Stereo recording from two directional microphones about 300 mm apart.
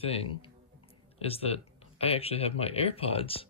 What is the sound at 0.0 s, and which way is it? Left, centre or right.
Speech, centre.